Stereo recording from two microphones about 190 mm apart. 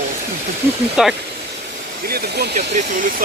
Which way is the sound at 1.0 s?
5° right (ahead or behind).